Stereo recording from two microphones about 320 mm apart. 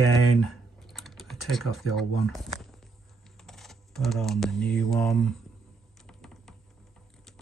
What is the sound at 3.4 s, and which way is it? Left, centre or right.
Speech, centre.